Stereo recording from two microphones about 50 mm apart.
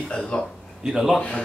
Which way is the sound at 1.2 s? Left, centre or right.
Left.